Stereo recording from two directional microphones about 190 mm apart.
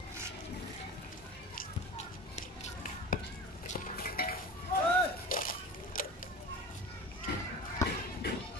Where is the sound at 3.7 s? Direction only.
50° left (ahead or behind).